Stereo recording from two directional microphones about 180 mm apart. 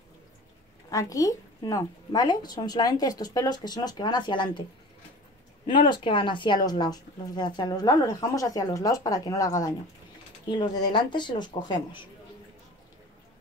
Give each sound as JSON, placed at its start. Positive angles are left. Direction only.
{"t": 0.8, "sound": "speech", "side_deg": 20}
{"t": 5.7, "sound": "speech", "side_deg": 25}